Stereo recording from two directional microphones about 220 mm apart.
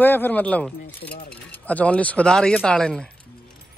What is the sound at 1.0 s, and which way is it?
Speech, 45° left (ahead or behind).